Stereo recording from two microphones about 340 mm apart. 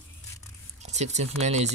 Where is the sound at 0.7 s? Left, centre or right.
Centre.